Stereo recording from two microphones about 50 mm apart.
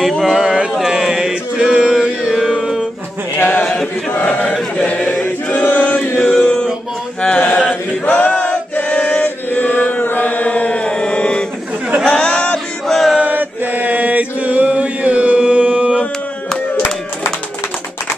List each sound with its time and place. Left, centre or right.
0.2 s mantra: centre
3.3 s a sound: left
4.7 s chant: left
5.2 s choir: left
6.3 s a sound: centre
8.0 s chant: left
12.0 s chatter: centre
12.8 s a sound: centre
13.2 s chant: right
16.7 s clapping: left